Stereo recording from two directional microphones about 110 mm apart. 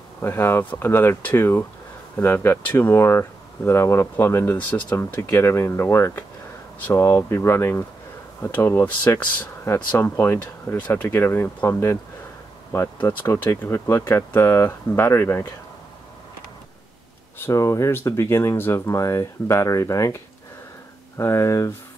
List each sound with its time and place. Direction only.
0.2 s speech: 20° left (ahead or behind)
17.4 s speech: 25° left (ahead or behind)
21.2 s speech: 30° left (ahead or behind)